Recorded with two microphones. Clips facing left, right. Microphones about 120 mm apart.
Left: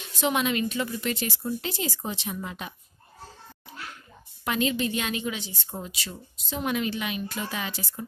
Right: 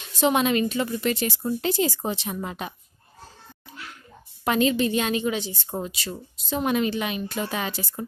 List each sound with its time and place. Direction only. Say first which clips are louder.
0.2 s a woman's voice: right 5 dB; 35° right (ahead or behind)
1.4 s a woman's voice: right 6 dB; 45° right (ahead or behind)
4.5 s a woman's voice: right 5 dB; 35° right (ahead or behind)